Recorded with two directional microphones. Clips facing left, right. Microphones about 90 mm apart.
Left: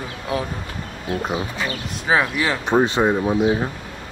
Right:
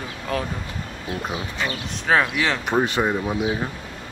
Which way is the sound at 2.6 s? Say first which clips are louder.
Left 6 dB; 25° left (ahead or behind).